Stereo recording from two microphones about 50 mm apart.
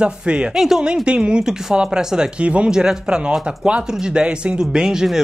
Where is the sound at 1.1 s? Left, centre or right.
Centre.